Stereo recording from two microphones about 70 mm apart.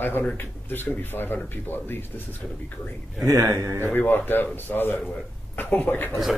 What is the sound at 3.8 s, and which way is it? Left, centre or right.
Speech, left.